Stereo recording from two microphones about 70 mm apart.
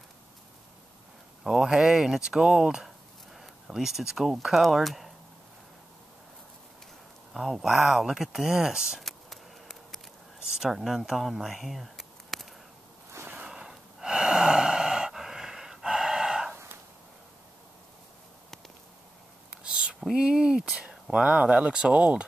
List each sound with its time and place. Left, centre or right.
1.4 s speech: centre
7.3 s speech: centre
9.0 s a sound: centre
10.5 s speech: centre
13.5 s gasp: centre
19.5 s a sound: centre
20.9 s speech: centre